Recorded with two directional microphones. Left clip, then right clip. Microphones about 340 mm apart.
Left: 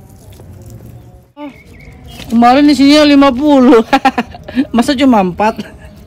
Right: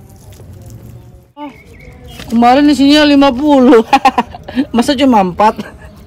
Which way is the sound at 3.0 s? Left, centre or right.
Centre.